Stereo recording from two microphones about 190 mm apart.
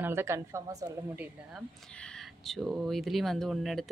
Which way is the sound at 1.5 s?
Centre (ahead or behind).